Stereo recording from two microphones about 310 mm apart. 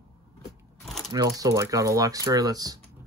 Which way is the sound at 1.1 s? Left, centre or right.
Centre.